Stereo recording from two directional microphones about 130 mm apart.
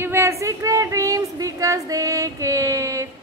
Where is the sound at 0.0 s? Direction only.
20° right (ahead or behind).